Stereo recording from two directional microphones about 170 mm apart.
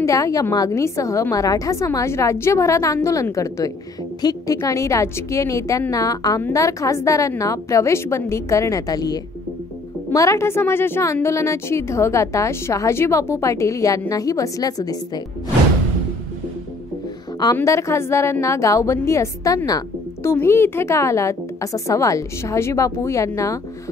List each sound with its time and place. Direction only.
0.0 s a woman's voice: 20° left (ahead or behind)
17.6 s a woman's voice: 15° left (ahead or behind)